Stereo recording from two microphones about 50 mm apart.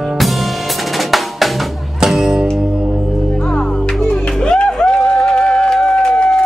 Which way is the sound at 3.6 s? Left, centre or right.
Centre.